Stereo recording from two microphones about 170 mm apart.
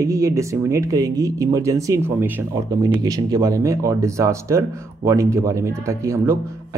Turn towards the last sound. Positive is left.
turn(degrees=-15)  # may be behind; listen again after turning